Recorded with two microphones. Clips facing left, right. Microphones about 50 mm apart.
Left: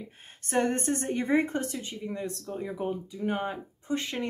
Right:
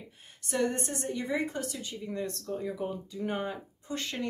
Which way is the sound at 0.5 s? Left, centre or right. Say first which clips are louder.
Left 4 dB; left.